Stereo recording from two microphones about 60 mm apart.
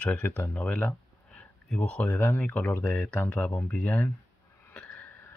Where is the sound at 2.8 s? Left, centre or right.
Left.